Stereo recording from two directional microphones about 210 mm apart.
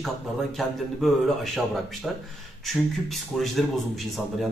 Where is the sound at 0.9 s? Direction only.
Centre (ahead or behind).